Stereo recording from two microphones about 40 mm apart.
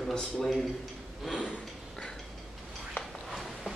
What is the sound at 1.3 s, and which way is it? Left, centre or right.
Snort, centre.